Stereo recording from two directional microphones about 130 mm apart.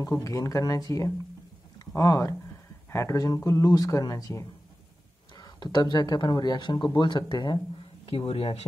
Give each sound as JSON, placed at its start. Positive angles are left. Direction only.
{"t": 0.1, "sound": "speech", "side_deg": 25}